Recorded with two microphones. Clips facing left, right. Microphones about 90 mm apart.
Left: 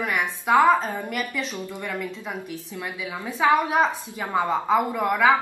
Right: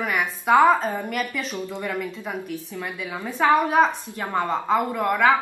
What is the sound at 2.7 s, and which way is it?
A woman's voice, 10° left (ahead or behind).